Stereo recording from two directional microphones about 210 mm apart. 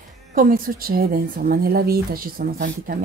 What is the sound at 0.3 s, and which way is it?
Speech, 40° right (ahead or behind).